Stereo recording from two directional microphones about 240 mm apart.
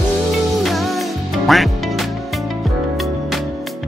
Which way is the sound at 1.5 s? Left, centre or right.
Centre.